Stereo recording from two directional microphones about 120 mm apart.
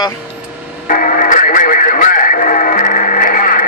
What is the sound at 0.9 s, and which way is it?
Radio, 90° left.